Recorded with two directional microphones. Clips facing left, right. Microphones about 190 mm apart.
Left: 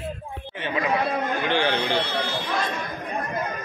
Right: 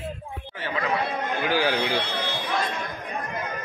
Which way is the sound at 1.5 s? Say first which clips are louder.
Even; 5° right (ahead or behind).